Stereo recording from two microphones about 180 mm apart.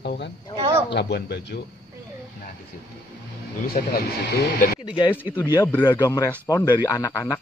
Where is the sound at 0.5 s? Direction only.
30° right (ahead or behind).